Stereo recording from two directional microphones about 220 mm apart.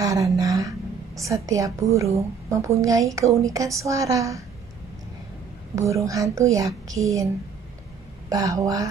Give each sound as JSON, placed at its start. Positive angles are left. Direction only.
{"t": 0.0, "sound": "a woman's voice", "side_deg": -15}
{"t": 5.8, "sound": "a woman's voice", "side_deg": -15}
{"t": 8.3, "sound": "a woman's voice", "side_deg": -15}